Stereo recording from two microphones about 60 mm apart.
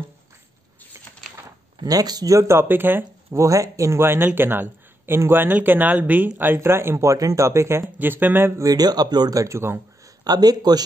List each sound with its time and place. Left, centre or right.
1.9 s speech: right
2.4 s speech: right
3.3 s speech: right
4.0 s speech: right
7.1 s speech: right
8.0 s speech: right
8.5 s speech: right
10.4 s speech: right